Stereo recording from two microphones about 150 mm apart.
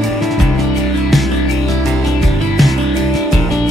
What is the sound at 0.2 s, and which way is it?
Music, centre (ahead or behind).